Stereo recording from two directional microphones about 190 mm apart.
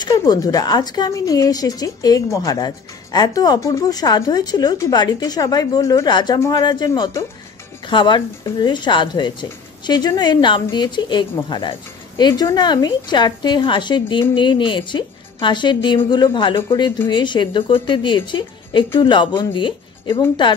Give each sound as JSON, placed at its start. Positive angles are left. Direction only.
{"t": 0.0, "sound": "a woman's voice", "side_deg": 20}